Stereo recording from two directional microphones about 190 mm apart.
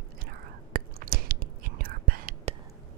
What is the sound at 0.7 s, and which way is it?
Whispering, 50° right (ahead or behind).